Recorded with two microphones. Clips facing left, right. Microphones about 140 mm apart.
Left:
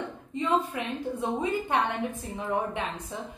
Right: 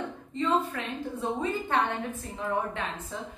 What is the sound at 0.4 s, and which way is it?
A woman's voice, 10° left (ahead or behind).